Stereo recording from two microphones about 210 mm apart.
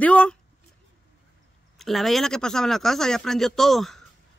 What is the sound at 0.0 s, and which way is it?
Speech, 5° left (ahead or behind).